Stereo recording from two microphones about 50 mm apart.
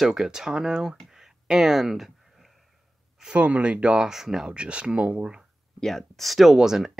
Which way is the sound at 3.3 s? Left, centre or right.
Right.